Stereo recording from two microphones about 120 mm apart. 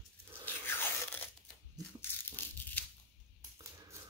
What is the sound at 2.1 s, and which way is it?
Crushing, 15° left (ahead or behind).